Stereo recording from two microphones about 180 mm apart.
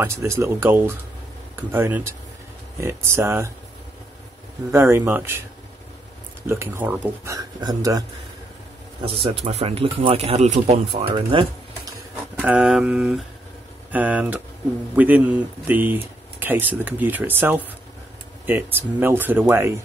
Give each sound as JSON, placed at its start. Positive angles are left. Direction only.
{"t": 0.0, "sound": "speech", "side_deg": -15}
{"t": 4.6, "sound": "speech", "side_deg": -15}
{"t": 6.4, "sound": "speech", "side_deg": -15}
{"t": 7.3, "sound": "speech", "side_deg": -20}
{"t": 9.0, "sound": "speech", "side_deg": -30}
{"t": 11.1, "sound": "a sound", "side_deg": -30}
{"t": 12.4, "sound": "a sound", "side_deg": -5}
{"t": 13.9, "sound": "speech", "side_deg": -10}